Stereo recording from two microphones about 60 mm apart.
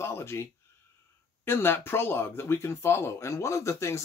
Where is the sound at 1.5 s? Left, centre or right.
Left.